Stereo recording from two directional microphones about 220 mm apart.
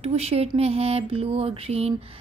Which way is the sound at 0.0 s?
25° right (ahead or behind).